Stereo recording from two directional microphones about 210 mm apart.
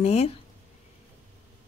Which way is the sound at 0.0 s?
30° left (ahead or behind).